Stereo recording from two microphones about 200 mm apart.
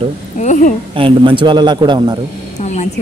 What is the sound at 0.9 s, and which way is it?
A man's voice, 25° right (ahead or behind).